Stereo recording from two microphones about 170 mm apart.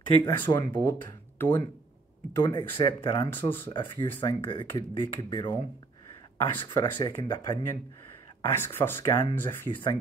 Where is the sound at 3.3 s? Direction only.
10° left (ahead or behind).